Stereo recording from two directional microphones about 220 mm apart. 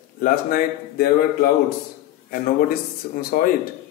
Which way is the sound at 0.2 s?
40° left (ahead or behind).